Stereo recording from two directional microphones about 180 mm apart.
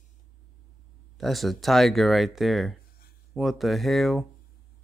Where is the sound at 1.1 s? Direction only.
Centre (ahead or behind).